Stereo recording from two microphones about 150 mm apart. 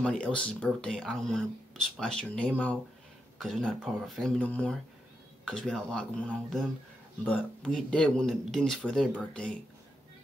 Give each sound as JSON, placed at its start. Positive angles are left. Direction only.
{"t": 0.0, "sound": "speech", "side_deg": 5}